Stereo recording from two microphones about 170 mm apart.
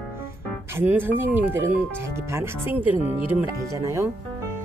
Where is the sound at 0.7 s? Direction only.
10° right (ahead or behind).